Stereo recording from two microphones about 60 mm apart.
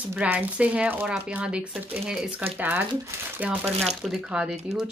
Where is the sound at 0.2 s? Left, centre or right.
Right.